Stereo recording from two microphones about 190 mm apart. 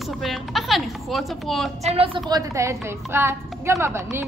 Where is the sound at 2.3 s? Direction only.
15° right (ahead or behind).